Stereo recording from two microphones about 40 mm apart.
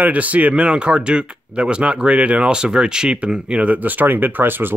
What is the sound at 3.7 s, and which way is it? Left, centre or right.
Speech, right.